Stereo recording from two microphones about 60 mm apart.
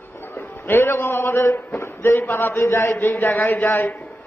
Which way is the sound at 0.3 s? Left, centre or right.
Left.